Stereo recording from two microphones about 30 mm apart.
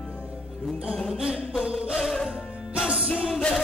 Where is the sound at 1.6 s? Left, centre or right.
Right.